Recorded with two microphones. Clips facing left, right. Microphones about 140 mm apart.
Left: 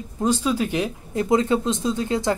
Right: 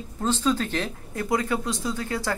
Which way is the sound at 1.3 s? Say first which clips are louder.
Left 6 dB; 25° left (ahead or behind).